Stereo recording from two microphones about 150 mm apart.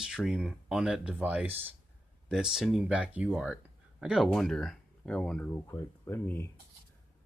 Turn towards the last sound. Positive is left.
turn(degrees=15)  # may be behind; listen again after turning